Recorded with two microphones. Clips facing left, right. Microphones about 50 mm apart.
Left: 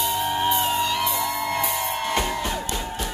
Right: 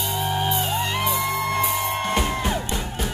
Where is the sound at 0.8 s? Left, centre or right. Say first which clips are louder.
Even; right.